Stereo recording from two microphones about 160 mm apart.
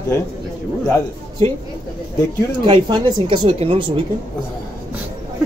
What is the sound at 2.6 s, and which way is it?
Speech, 30° right (ahead or behind).